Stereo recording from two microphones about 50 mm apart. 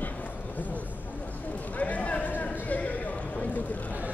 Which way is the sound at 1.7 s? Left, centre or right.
Left.